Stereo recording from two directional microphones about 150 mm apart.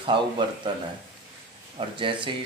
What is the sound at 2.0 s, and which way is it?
Speech, 35° right (ahead or behind).